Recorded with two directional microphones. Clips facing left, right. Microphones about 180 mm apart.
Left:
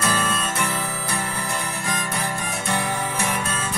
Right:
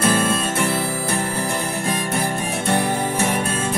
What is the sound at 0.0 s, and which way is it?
Music, 30° right (ahead or behind).